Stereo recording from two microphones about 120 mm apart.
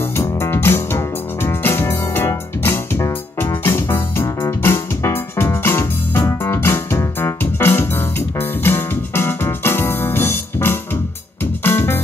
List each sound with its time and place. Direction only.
0.0 s music: 20° left (ahead or behind)